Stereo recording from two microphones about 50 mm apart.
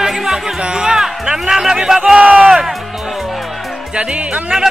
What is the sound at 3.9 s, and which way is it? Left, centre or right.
Music, right.